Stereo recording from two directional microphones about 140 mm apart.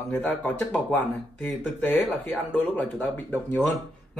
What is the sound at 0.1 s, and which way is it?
Speech, 10° left (ahead or behind).